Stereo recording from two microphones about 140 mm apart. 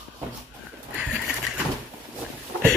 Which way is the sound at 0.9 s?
5° right (ahead or behind).